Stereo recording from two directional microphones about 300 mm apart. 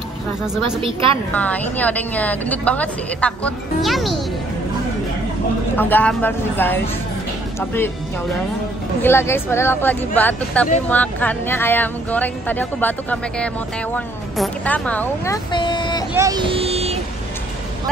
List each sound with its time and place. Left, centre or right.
1.3 s a woman's voice: centre
5.8 s speech: centre
9.0 s a woman's voice: centre
16.2 s speech: centre